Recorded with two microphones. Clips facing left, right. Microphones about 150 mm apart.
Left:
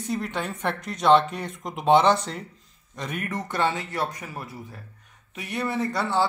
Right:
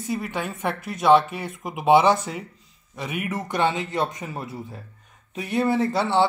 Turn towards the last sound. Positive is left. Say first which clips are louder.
# right 6 dB
turn(degrees=-25)  # may be behind; listen again after turning